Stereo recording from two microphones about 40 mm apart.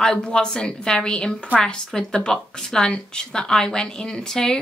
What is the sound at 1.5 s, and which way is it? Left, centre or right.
Speech, right.